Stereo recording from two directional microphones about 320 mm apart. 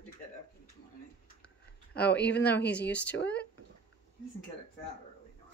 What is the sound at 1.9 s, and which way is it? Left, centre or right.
Speech, centre.